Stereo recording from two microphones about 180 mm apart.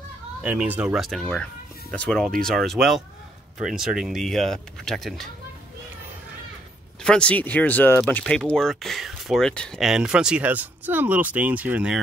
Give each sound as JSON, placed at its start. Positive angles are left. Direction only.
{"t": 0.4, "sound": "speech", "side_deg": -10}
{"t": 7.0, "sound": "speech", "side_deg": 5}